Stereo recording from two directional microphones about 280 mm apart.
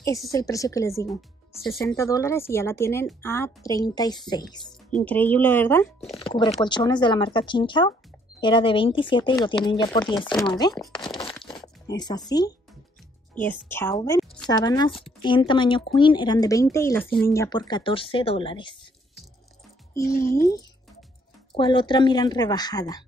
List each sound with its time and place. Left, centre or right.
0.3 s a woman's voice: centre
1.0 s speech: centre
2.0 s a woman's voice: centre
11.0 s a sound: centre
11.5 s a woman's voice: centre
21.5 s a woman's voice: centre